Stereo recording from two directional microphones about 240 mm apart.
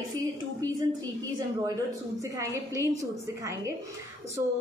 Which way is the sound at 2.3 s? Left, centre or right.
Centre.